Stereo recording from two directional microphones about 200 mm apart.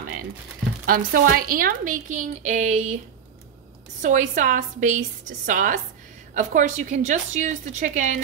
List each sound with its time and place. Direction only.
0.8 s a woman's voice: 45° right (ahead or behind)
4.0 s a woman's voice: 40° right (ahead or behind)